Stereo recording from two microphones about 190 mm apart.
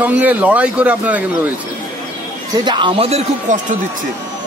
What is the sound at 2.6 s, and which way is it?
Speech, 25° right (ahead or behind).